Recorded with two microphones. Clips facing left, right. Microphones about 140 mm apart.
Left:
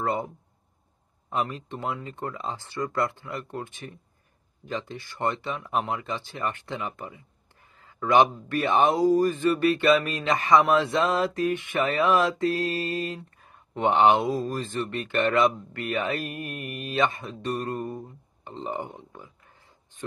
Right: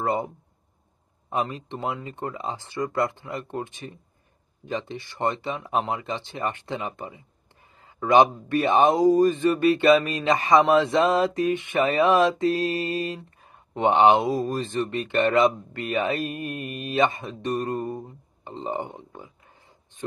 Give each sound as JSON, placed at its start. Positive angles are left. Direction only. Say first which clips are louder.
{"t": 0.0, "sound": "speech", "louder": "right 2 dB", "side_deg": -20}
{"t": 1.3, "sound": "speech", "louder": "right 2 dB", "side_deg": -20}